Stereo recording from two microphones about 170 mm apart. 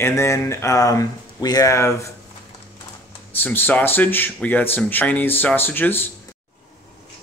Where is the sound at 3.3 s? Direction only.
10° left (ahead or behind).